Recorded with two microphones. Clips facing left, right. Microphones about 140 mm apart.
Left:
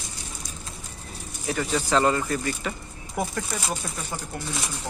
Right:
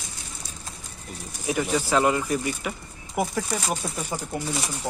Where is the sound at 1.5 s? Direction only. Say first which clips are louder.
Right 1 dB; 15° right (ahead or behind).